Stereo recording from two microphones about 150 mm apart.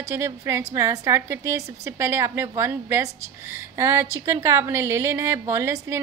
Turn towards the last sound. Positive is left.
turn(degrees=-20)  # may be behind; listen again after turning